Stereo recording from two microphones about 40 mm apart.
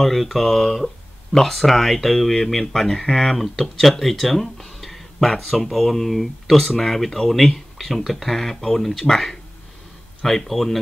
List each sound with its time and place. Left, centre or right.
0.0 s speech: centre